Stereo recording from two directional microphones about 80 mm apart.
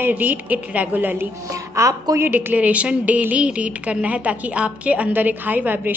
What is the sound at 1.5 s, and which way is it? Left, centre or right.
Speech, right.